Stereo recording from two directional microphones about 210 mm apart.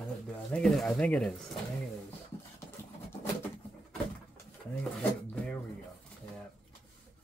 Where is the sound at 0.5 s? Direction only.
5° left (ahead or behind).